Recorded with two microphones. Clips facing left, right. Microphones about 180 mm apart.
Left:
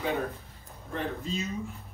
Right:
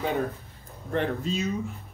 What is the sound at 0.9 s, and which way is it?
Speech, 70° right (ahead or behind).